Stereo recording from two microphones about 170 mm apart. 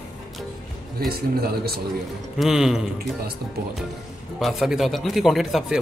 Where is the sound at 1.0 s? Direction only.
65° right (ahead or behind).